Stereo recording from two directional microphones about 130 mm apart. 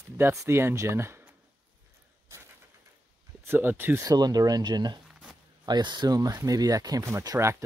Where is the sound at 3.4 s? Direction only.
15° right (ahead or behind).